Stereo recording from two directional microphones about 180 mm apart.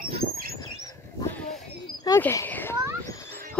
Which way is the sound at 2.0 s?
15° left (ahead or behind).